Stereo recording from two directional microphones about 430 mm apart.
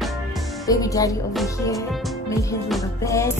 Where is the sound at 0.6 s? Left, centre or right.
Centre.